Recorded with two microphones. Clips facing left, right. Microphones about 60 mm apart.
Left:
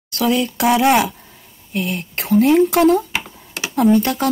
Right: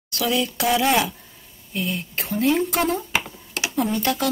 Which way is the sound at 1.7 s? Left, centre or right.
Left.